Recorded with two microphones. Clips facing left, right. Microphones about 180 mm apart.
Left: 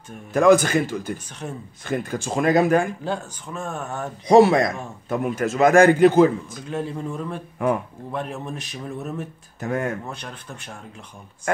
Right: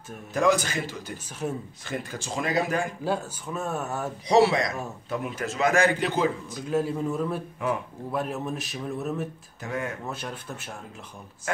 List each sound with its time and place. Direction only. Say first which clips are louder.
0.3 s a man's voice: left 8 dB; 55° left (ahead or behind)
1.4 s a man's voice: right 3 dB; 5° right (ahead or behind)
1.9 s a man's voice: left 8 dB; 55° left (ahead or behind)
3.0 s speech: even; 5° right (ahead or behind)
4.3 s a man's voice: left 6 dB; 50° left (ahead or behind)
6.7 s a man's voice: right 2 dB; 5° right (ahead or behind)
7.5 s a man's voice: left 10 dB; 50° left (ahead or behind)
8.1 s a man's voice: even; 5° right (ahead or behind)
9.6 s a man's voice: left 6 dB; 50° left (ahead or behind)
10.0 s a man's voice: right 1 dB; 5° right (ahead or behind)
11.5 s speech: left 6 dB; 50° left (ahead or behind)